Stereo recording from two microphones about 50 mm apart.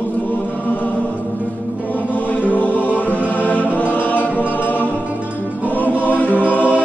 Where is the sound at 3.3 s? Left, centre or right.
Left.